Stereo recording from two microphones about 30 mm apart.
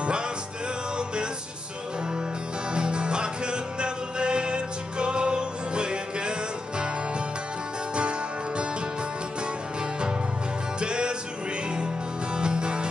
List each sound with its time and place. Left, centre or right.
2.7 s music: right
10.8 s music: right
12.4 s music: right